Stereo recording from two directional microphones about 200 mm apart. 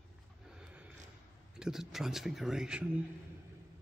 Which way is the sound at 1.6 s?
Centre (ahead or behind).